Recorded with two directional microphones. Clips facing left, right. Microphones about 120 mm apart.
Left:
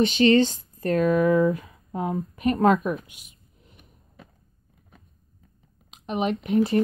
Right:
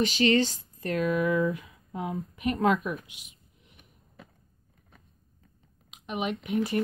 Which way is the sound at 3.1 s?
45° left (ahead or behind).